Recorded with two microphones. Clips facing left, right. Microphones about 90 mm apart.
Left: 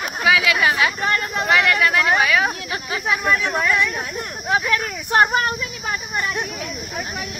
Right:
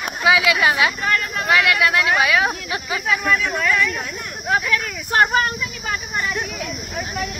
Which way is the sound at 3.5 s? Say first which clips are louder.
Even; 30° left (ahead or behind).